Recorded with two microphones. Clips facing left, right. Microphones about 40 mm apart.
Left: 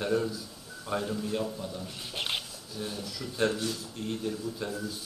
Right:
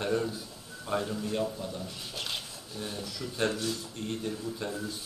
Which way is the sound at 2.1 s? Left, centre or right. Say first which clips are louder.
Left 4 dB; left.